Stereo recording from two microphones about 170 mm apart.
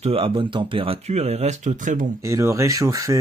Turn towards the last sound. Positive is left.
turn(degrees=-20)  # may be behind; listen again after turning